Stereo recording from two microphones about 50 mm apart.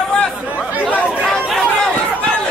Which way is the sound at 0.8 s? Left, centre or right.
Left.